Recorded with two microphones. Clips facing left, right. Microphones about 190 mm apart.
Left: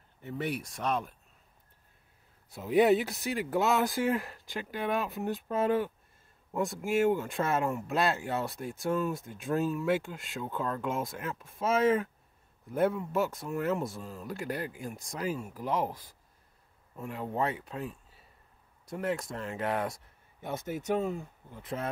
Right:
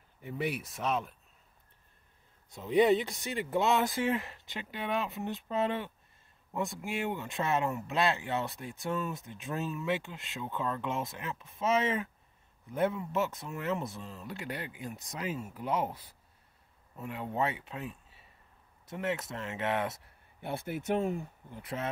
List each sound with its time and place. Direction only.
0.2 s speech: 10° right (ahead or behind)
2.5 s speech: 5° left (ahead or behind)
14.4 s speech: 45° left (ahead or behind)
15.0 s speech: 5° right (ahead or behind)
17.2 s speech: centre (ahead or behind)
17.5 s speech: 40° left (ahead or behind)
19.3 s speech: centre (ahead or behind)
21.1 s speech: 15° right (ahead or behind)